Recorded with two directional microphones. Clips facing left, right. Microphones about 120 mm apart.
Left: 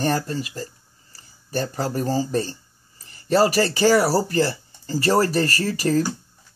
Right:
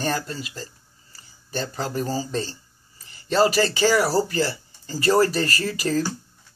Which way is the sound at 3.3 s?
10° left (ahead or behind).